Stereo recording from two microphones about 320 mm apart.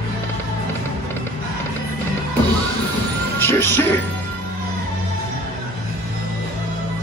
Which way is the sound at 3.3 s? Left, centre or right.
Centre.